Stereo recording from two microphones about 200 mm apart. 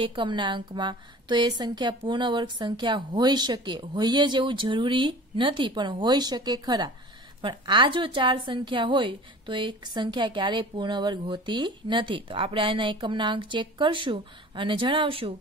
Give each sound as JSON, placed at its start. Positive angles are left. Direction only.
{"t": 0.0, "sound": "a woman's voice", "side_deg": -25}